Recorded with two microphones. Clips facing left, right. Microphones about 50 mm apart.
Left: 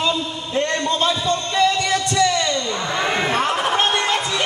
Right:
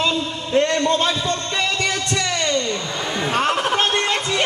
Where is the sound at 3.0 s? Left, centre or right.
Left.